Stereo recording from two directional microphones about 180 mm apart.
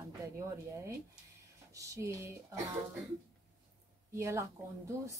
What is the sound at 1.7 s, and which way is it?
Speech, 20° right (ahead or behind).